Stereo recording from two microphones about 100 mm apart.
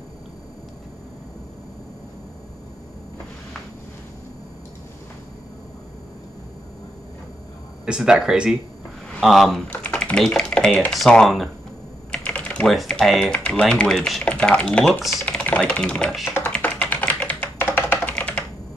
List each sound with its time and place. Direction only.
7.8 s speech: 5° right (ahead or behind)
9.7 s speech: 15° left (ahead or behind)
12.1 s typing: 10° left (ahead or behind)
12.6 s speech: 5° left (ahead or behind)
15.2 s speech: 10° left (ahead or behind)
16.5 s computer keyboard: 10° left (ahead or behind)
18.1 s computer keyboard: 10° left (ahead or behind)